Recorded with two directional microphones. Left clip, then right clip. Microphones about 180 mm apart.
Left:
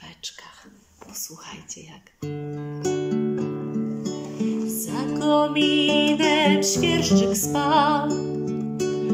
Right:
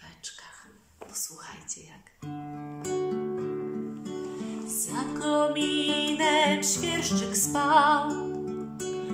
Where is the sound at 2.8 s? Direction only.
45° left (ahead or behind).